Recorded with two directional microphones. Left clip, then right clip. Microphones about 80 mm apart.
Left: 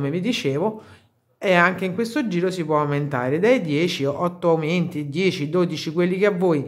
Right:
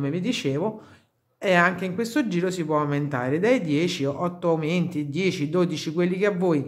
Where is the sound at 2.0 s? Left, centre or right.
Centre.